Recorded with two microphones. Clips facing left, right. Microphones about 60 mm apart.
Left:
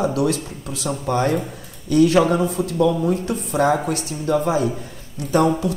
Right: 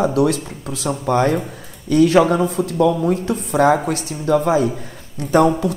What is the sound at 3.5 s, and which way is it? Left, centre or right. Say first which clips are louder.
Speech: right 4 dB; right.